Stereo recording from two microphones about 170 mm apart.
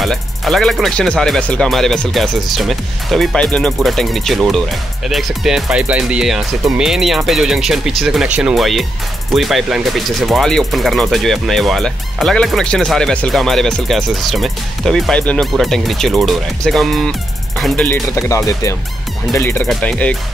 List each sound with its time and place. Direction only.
0.0 s speech: centre (ahead or behind)
17.6 s music: centre (ahead or behind)
17.8 s speech: 15° left (ahead or behind)